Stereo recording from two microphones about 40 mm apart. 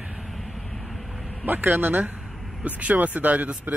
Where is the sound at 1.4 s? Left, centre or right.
Right.